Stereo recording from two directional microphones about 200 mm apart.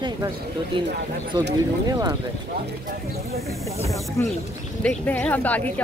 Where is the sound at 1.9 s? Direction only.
20° right (ahead or behind).